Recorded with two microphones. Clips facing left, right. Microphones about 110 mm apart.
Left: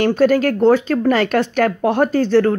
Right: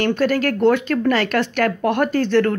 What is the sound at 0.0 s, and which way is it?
Speech, 40° left (ahead or behind).